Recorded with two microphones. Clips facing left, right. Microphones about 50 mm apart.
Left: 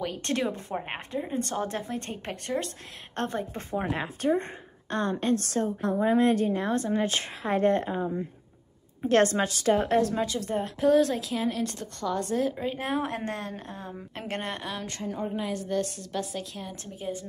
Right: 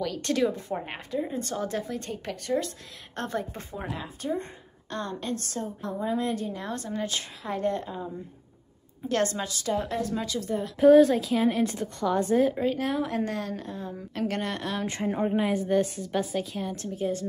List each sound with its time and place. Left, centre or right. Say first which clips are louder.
0.2 s a woman's voice: right 5 dB; left
3.9 s a woman's voice: left 5 dB; left
4.3 s a woman's voice: left 5 dB; left
10.1 s a woman's voice: left 1 dB; left
10.8 s speech: right 6 dB; centre
11.4 s a woman's voice: right 5 dB; centre
12.7 s a woman's voice: right 2 dB; left
14.6 s speech: right 4 dB; centre
15.0 s a woman's voice: right 5 dB; right
15.3 s a woman's voice: right 5 dB; centre
16.9 s a woman's voice: right 5 dB; centre